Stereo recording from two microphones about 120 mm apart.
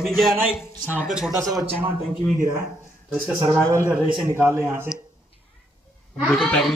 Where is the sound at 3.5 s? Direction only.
25° right (ahead or behind).